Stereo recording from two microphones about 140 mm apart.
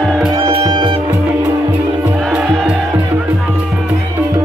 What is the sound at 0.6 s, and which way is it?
Music, 30° right (ahead or behind).